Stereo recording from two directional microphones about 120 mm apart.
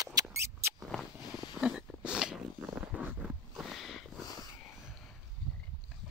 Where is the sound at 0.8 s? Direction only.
Centre (ahead or behind).